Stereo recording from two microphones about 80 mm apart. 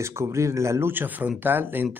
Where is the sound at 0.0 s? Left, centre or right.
Right.